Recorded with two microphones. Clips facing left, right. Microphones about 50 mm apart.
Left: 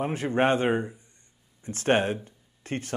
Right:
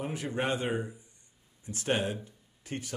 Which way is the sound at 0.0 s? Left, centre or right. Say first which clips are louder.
Left 8 dB; left.